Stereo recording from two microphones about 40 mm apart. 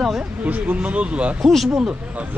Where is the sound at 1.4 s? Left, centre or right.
Centre.